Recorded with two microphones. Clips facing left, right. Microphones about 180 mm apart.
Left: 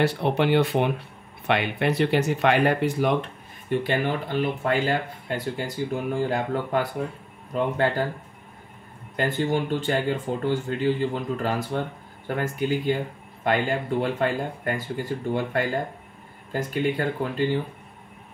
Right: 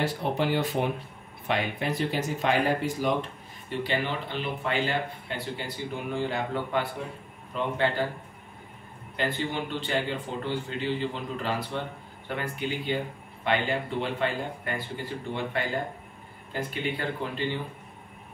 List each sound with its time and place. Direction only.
0.0 s speech: 70° left (ahead or behind)
3.8 s speech: 50° left (ahead or behind)
9.1 s speech: 45° left (ahead or behind)